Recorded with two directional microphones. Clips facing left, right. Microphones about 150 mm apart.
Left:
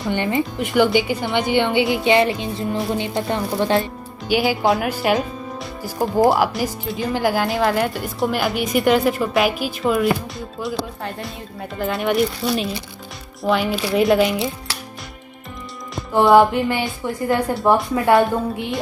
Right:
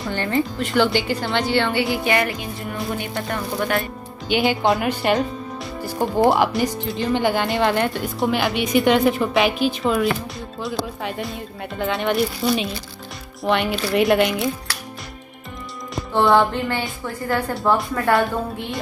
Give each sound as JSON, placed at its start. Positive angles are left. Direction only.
{"t": 0.1, "sound": "a woman's voice", "side_deg": 15}
{"t": 4.3, "sound": "speech", "side_deg": 5}
{"t": 16.3, "sound": "speech", "side_deg": 15}